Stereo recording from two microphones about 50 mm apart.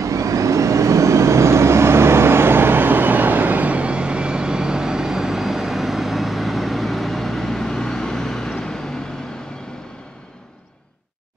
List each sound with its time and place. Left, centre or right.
0.0 s vehicle: right; by 9.0 s centre